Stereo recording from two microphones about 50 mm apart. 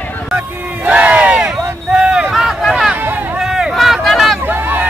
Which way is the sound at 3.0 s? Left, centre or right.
Right.